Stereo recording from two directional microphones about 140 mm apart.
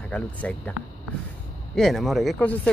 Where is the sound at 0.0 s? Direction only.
10° left (ahead or behind).